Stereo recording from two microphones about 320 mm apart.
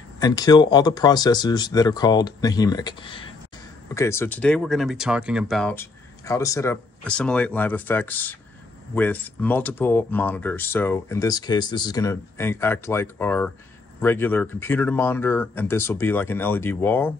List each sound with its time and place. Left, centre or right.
0.2 s speech: centre